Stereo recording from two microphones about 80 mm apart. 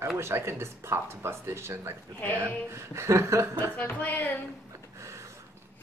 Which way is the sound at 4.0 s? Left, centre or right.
Left.